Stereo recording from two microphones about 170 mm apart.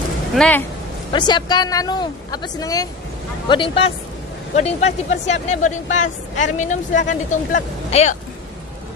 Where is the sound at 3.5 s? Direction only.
30° left (ahead or behind).